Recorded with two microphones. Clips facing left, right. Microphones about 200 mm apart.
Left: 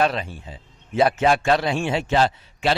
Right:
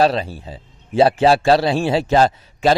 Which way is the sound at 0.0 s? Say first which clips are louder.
Right 5 dB; 35° right (ahead or behind).